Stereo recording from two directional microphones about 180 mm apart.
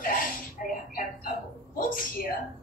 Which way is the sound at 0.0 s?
50° left (ahead or behind).